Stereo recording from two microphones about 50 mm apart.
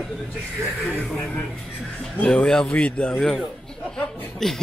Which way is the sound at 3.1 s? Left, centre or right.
Centre.